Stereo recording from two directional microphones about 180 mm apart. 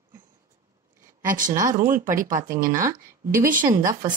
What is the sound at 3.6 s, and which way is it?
Speech, 15° right (ahead or behind).